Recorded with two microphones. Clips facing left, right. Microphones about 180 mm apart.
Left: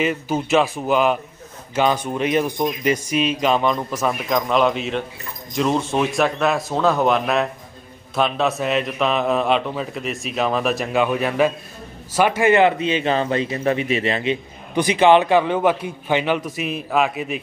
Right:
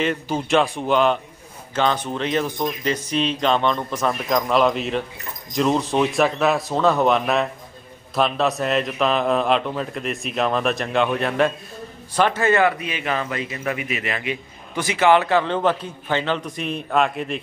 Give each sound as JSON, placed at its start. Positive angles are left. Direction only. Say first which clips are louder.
{"t": 0.0, "sound": "a man's voice", "louder": "left 2 dB", "side_deg": 5}